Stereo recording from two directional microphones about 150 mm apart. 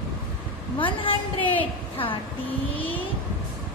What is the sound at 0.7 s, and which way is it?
A woman's voice, 35° left (ahead or behind).